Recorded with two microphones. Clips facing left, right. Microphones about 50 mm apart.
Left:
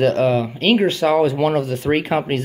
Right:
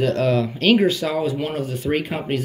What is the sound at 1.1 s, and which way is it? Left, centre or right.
Speech, left.